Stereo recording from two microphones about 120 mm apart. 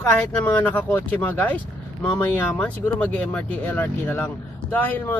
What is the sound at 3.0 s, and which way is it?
Speech, 10° left (ahead or behind).